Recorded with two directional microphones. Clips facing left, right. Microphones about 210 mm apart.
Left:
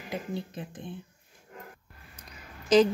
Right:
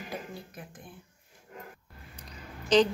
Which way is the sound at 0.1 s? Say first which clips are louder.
Left 10 dB; 25° left (ahead or behind).